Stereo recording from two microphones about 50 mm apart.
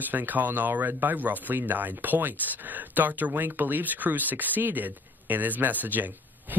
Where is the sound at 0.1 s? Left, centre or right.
Right.